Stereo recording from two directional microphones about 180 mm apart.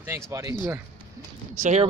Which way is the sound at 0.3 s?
20° right (ahead or behind).